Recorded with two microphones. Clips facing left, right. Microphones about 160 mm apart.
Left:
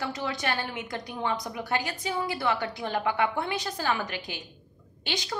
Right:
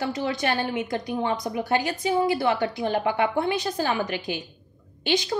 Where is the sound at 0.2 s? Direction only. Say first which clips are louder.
Right 6 dB; 25° right (ahead or behind).